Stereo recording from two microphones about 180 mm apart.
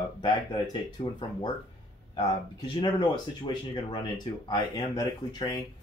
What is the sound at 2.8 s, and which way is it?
Speech, 25° left (ahead or behind).